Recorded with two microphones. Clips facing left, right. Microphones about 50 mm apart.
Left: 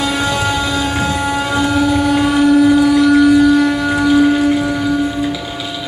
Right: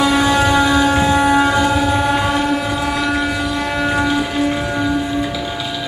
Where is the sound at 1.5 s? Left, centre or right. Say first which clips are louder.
Left 1 dB; centre.